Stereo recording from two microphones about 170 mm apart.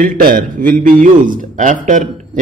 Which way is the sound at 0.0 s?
55° right (ahead or behind).